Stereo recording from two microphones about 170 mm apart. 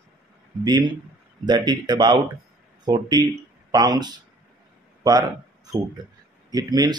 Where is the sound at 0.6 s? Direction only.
25° right (ahead or behind).